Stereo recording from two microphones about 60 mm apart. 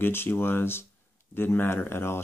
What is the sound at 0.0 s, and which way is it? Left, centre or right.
Speech, left.